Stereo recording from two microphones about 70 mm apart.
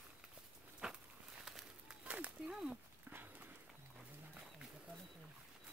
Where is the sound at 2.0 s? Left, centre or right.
Centre.